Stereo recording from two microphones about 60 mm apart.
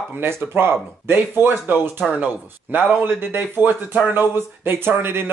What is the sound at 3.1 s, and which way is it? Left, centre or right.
A man's voice, right.